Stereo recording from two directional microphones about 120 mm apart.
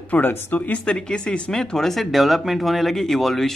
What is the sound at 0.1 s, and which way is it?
Speech, 15° left (ahead or behind).